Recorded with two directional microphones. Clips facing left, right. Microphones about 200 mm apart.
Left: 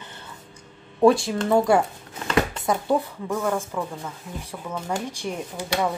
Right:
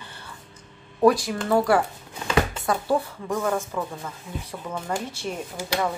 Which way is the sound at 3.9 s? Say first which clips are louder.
Even; 10° left (ahead or behind).